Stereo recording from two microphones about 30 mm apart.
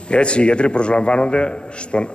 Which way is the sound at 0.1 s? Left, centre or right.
Left.